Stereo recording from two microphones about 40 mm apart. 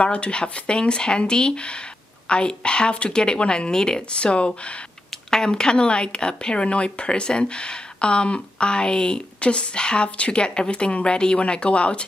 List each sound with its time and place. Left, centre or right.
0.0 s a woman's voice: left
4.1 s a woman's voice: left
5.1 s a woman's voice: centre